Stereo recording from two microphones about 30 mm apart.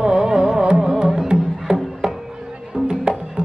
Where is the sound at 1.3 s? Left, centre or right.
Right.